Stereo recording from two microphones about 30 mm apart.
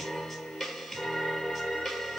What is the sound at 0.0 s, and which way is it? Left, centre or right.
Music, centre.